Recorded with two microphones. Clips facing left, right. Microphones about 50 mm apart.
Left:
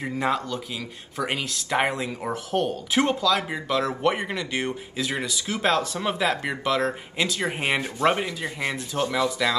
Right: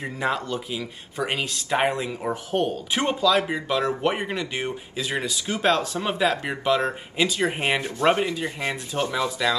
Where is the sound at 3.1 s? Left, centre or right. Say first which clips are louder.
Right 3 dB; right.